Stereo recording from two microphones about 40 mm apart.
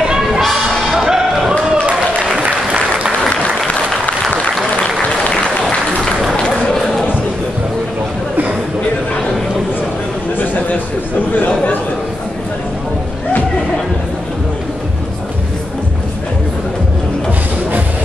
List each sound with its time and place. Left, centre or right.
0.0 s music: centre
2.3 s applause: right
10.4 s a sound: left